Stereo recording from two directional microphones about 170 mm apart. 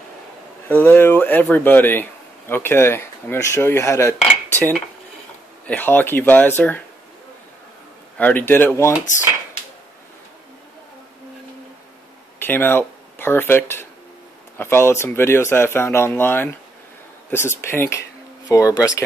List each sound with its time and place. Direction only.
0.7 s speech: 10° left (ahead or behind)
4.6 s dishes: 10° left (ahead or behind)
5.7 s speech: 10° left (ahead or behind)
8.2 s speech: 10° left (ahead or behind)
12.4 s speech: 10° left (ahead or behind)